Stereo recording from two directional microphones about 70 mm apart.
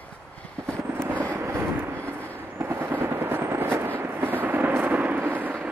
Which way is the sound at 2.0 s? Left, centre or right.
Left.